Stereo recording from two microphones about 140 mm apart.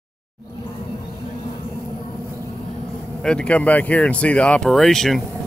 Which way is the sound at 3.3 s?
10° left (ahead or behind).